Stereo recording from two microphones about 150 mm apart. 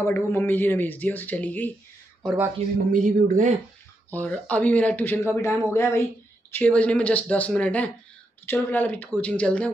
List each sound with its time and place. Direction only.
0.0 s speech: 15° left (ahead or behind)
2.9 s speech: 60° right (ahead or behind)
4.1 s speech: 10° left (ahead or behind)